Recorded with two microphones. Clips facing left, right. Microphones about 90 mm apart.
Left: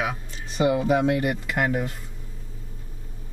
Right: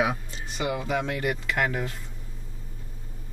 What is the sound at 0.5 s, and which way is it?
Speech, 25° left (ahead or behind).